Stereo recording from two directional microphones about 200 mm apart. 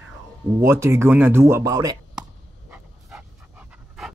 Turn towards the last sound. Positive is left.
turn(degrees=0)  # may be behind; listen again after turning